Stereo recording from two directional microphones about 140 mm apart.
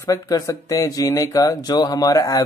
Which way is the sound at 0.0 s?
25° left (ahead or behind).